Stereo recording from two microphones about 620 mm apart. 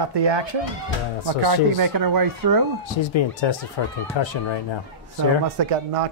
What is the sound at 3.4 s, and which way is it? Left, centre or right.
Speech, left.